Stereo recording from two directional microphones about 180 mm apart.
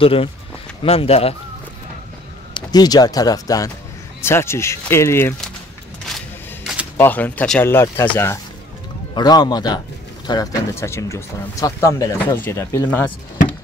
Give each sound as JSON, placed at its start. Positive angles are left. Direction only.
{"t": 0.0, "sound": "speech", "side_deg": 30}
{"t": 2.5, "sound": "speech", "side_deg": 20}
{"t": 6.0, "sound": "a sound", "side_deg": 0}
{"t": 7.0, "sound": "a man's voice", "side_deg": 10}